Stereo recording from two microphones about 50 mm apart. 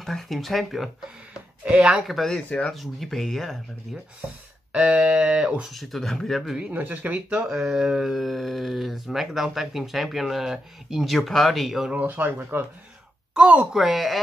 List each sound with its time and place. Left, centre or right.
0.0 s speech: centre
1.7 s a sound: right
2.0 s speech: centre
2.3 s speech: left
2.7 s speech: centre
4.7 s a sound: right
5.7 s speech: centre
6.7 s speech: right
7.2 s a sound: centre
7.5 s a sound: centre
8.2 s speech: centre
11.9 s speech: right
13.7 s speech: centre